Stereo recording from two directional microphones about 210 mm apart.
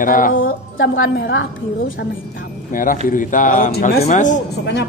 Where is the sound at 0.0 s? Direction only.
40° left (ahead or behind).